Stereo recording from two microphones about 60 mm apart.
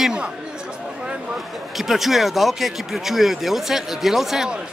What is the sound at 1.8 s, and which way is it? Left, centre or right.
Speech, centre.